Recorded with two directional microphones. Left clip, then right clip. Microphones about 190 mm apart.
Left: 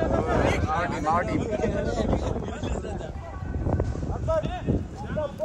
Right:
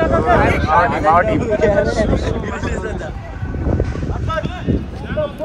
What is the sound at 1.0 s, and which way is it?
Speech, 35° right (ahead or behind).